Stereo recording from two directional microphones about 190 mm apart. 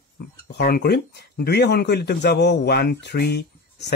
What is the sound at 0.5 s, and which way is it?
Speech, 50° left (ahead or behind).